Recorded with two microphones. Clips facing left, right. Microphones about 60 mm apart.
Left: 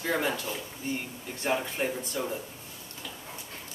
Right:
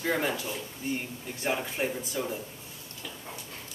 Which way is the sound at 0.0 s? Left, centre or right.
Centre.